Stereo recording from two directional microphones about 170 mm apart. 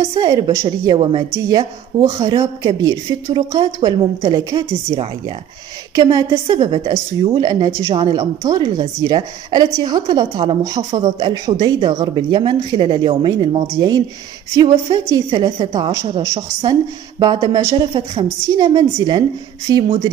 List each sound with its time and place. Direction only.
0.0 s speech: 20° right (ahead or behind)
6.6 s a woman's voice: 35° right (ahead or behind)
6.9 s speech: 25° right (ahead or behind)